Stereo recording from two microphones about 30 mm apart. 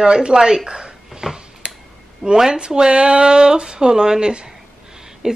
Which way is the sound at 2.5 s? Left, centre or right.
Right.